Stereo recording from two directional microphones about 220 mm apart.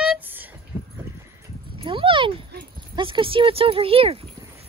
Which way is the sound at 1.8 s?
25° right (ahead or behind).